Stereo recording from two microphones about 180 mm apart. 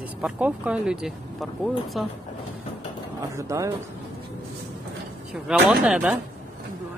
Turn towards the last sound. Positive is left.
turn(degrees=-5)  # may be behind; listen again after turning